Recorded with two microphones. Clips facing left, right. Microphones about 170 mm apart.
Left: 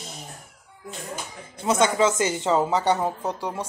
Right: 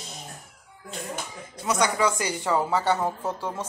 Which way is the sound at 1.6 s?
25° left (ahead or behind).